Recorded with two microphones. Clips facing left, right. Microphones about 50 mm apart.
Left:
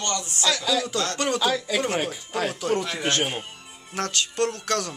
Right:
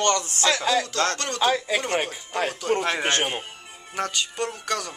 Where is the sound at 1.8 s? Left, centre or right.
Centre.